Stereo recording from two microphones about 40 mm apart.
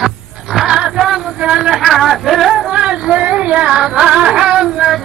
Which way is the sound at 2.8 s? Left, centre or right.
Right.